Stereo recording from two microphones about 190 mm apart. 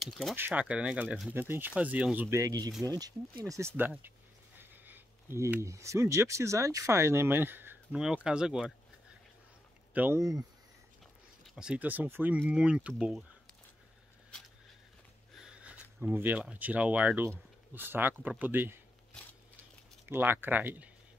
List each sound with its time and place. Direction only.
0.0 s speech: centre (ahead or behind)
0.4 s speech: 10° right (ahead or behind)
9.9 s speech: 10° right (ahead or behind)
11.4 s speech: 5° right (ahead or behind)
15.4 s speech: 5° right (ahead or behind)
20.1 s speech: 10° right (ahead or behind)